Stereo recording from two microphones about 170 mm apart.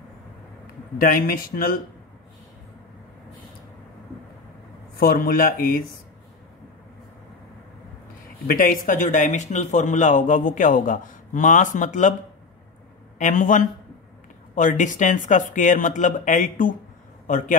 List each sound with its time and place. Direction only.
0.9 s speech: 55° left (ahead or behind)
4.9 s speech: 60° left (ahead or behind)
8.5 s speech: 55° left (ahead or behind)
13.2 s speech: 50° left (ahead or behind)